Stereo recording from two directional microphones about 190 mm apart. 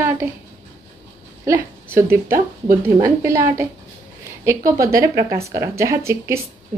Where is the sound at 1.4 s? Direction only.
15° right (ahead or behind).